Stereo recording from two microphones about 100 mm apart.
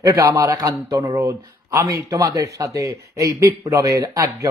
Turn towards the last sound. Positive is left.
turn(degrees=-35)  # may be behind; listen again after turning